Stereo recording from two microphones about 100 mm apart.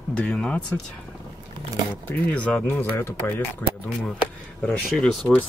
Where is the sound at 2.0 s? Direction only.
15° left (ahead or behind).